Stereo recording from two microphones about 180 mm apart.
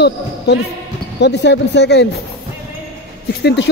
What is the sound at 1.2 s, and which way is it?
Speech, 70° left (ahead or behind).